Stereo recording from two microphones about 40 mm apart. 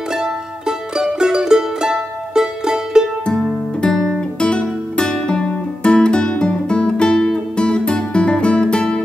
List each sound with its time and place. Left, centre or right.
0.1 s music: centre
3.3 s music: centre